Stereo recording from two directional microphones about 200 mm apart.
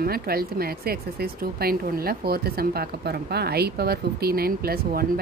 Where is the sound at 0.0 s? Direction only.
50° right (ahead or behind).